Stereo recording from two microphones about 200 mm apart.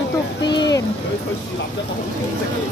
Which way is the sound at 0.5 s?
20° left (ahead or behind).